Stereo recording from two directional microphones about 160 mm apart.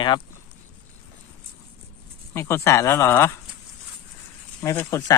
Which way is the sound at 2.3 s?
15° left (ahead or behind).